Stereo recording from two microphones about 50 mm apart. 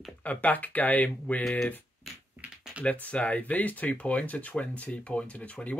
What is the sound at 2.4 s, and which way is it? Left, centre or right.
Typing, right.